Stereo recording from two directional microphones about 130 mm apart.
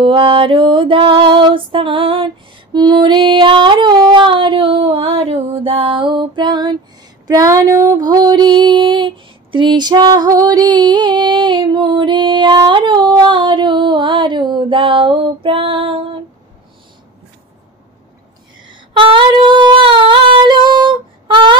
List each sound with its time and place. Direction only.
0.0 s female singing: 40° right (ahead or behind)
18.7 s singing: 40° right (ahead or behind)